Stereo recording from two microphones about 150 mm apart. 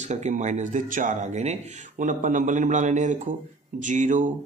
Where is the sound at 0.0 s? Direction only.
50° right (ahead or behind).